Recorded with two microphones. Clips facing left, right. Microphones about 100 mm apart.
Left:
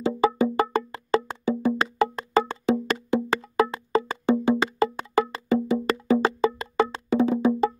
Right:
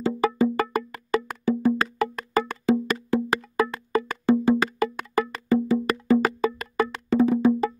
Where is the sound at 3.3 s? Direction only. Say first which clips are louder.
Left 2 dB; 25° left (ahead or behind).